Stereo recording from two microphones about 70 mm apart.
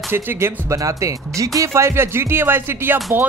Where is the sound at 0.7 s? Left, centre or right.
Right.